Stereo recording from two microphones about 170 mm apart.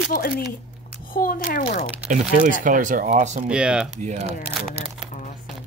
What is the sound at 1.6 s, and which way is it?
Speech, 40° left (ahead or behind).